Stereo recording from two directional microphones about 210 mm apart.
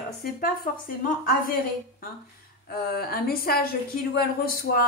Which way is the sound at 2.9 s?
45° left (ahead or behind).